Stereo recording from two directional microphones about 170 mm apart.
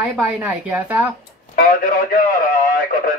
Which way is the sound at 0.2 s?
10° right (ahead or behind).